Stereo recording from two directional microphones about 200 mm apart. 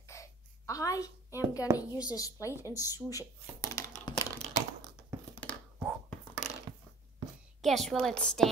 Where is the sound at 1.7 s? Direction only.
15° right (ahead or behind).